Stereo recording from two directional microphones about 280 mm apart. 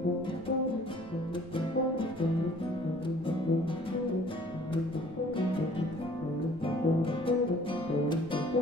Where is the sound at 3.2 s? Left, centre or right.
Centre.